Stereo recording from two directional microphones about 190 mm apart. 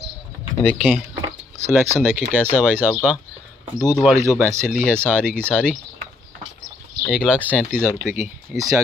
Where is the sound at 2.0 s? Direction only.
5° right (ahead or behind).